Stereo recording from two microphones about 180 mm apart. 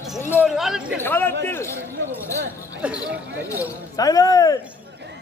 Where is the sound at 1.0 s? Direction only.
10° left (ahead or behind).